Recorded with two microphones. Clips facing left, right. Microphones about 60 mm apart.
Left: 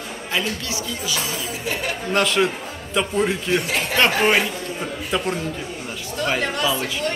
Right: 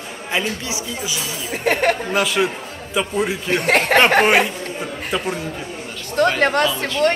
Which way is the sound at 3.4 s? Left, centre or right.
Right.